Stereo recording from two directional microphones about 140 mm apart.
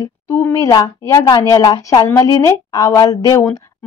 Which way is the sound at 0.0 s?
20° left (ahead or behind).